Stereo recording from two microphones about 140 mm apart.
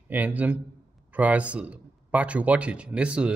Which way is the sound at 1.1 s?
10° right (ahead or behind).